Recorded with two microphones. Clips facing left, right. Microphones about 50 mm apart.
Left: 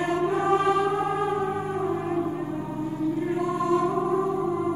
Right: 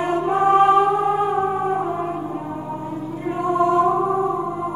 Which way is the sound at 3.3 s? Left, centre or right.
Right.